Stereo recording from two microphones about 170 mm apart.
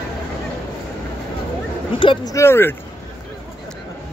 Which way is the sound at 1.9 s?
30° left (ahead or behind).